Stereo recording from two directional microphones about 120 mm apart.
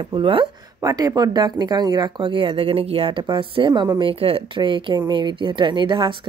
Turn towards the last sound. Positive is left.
turn(degrees=-40)  # may be behind; listen again after turning